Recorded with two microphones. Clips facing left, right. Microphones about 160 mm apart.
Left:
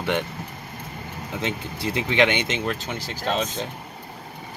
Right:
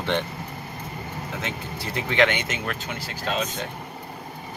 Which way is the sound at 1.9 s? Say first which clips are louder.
Left 1 dB; 20° left (ahead or behind).